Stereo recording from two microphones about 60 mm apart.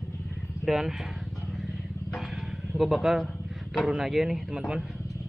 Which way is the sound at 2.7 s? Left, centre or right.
Centre.